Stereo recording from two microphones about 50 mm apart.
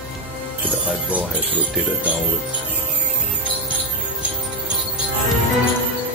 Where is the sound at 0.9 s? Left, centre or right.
Right.